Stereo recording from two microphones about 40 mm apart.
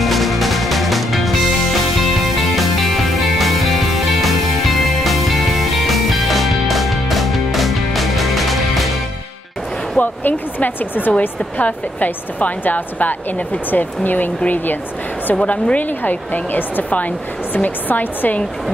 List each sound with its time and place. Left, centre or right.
0.0 s music: centre
9.9 s speech: left
11.1 s a woman's voice: left
15.4 s a woman's voice: left
16.0 s a woman's voice: left